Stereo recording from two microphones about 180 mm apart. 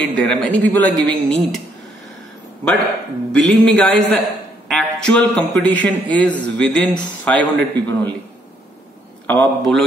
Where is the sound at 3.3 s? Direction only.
5° left (ahead or behind).